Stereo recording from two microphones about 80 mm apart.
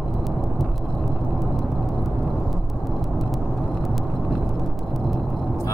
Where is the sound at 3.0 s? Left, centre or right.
Centre.